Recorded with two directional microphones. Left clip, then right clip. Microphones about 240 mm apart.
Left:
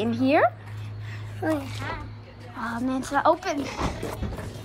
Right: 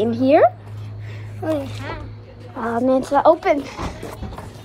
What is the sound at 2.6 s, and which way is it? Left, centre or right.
Speech, centre.